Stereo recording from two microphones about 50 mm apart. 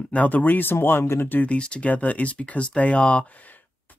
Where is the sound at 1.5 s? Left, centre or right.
Left.